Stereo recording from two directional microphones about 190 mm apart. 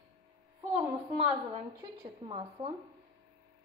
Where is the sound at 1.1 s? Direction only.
30° right (ahead or behind).